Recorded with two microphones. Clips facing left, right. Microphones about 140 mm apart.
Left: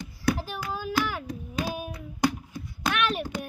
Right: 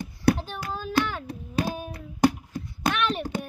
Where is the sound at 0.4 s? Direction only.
5° left (ahead or behind).